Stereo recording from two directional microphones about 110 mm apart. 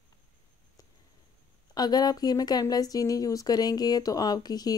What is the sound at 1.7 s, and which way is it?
Speech, 40° left (ahead or behind).